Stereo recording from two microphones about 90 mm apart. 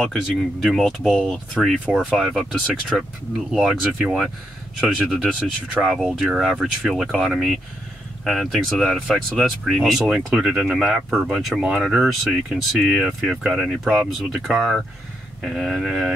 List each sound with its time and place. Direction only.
0.0 s speech: 5° left (ahead or behind)